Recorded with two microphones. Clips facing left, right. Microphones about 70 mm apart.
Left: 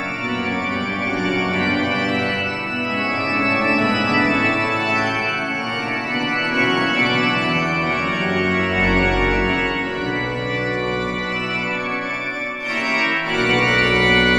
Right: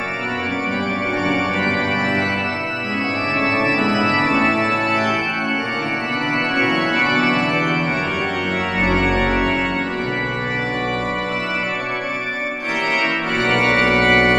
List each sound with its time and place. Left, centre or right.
1.2 s organ: right
3.3 s organ: centre
6.8 s organ: right
7.2 s organ: centre
8.9 s organ: centre
13.5 s organ: centre